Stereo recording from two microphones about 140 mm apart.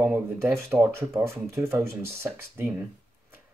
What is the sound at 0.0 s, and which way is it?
Speech, 15° right (ahead or behind).